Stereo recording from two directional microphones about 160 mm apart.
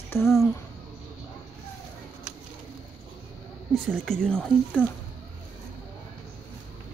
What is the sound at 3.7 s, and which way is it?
Speech, 5° left (ahead or behind).